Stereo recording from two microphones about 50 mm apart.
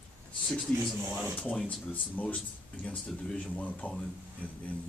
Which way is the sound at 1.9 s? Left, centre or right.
Left.